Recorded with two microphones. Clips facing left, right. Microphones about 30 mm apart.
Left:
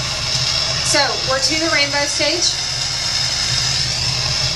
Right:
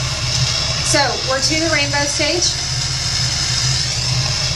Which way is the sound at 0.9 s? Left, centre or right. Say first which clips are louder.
Right 1 dB; centre.